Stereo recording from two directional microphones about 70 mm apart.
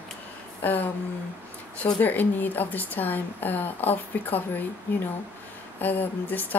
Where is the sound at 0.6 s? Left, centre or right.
Left.